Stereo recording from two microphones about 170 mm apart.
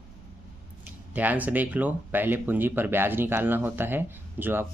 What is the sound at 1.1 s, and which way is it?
Speech, 10° right (ahead or behind).